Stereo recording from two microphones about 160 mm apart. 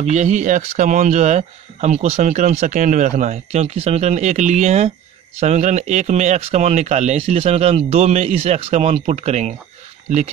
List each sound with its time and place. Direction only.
0.1 s speech: 45° right (ahead or behind)